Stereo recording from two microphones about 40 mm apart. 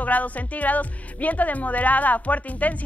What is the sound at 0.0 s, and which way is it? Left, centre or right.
Speech, left.